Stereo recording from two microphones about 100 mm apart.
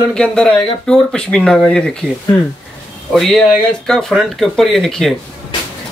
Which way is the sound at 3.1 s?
5° left (ahead or behind).